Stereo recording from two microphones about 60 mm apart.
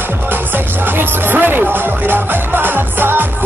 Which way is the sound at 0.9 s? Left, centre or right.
Right.